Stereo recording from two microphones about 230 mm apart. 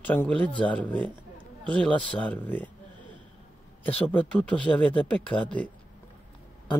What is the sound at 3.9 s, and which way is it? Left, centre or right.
Speech, centre.